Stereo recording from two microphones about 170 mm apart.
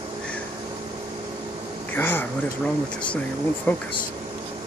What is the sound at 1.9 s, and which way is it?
Speech, 10° left (ahead or behind).